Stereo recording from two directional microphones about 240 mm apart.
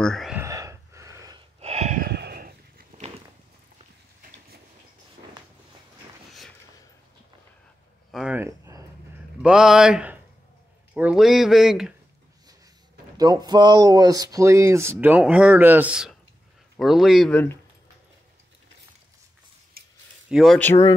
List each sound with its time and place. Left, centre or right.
0.0 s a sound: centre
0.4 s gasp: centre
1.6 s a sound: right
2.0 s dog: right
4.2 s vehicle: right
8.1 s a sound: centre
9.4 s speech: centre
13.2 s speech: centre
20.2 s speech: centre